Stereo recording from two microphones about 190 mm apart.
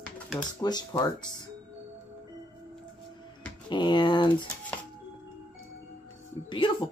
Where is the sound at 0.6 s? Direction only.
20° left (ahead or behind).